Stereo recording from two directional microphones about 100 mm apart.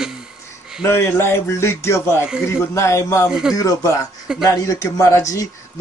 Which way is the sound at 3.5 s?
35° left (ahead or behind).